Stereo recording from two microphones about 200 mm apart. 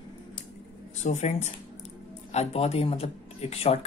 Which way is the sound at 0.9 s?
35° left (ahead or behind).